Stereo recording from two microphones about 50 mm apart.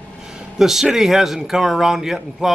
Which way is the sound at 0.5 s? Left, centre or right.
Centre.